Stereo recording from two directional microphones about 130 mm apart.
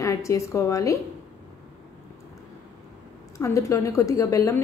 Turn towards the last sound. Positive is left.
turn(degrees=25)  # may be behind; listen again after turning